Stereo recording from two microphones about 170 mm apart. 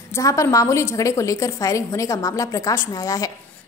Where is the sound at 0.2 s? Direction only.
20° left (ahead or behind).